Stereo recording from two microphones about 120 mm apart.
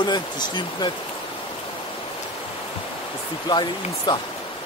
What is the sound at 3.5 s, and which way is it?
Speech, 40° left (ahead or behind).